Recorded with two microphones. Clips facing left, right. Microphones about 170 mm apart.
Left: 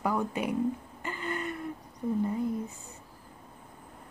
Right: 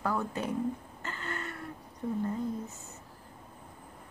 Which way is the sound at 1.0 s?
15° left (ahead or behind).